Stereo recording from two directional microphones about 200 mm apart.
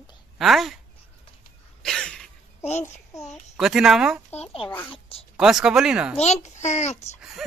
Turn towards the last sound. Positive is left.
turn(degrees=35)  # may be behind; listen again after turning